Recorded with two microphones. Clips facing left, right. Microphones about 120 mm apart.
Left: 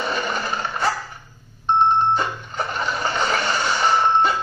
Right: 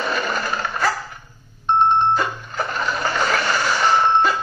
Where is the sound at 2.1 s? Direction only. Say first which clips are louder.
Right 1 dB; 25° left (ahead or behind).